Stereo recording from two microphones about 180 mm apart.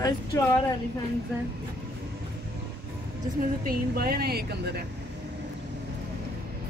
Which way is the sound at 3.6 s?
60° right (ahead or behind).